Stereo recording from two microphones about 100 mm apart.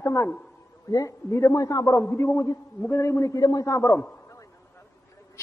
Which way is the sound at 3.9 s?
15° left (ahead or behind).